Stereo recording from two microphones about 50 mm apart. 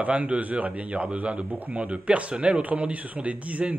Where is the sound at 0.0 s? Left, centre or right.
Right.